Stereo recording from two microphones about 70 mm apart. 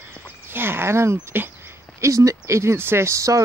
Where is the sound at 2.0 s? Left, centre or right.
Right.